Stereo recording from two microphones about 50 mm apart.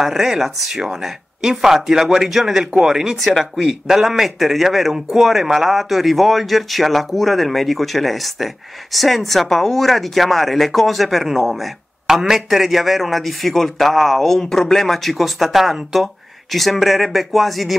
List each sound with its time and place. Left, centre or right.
0.0 s a man's voice: centre
3.2 s speech: centre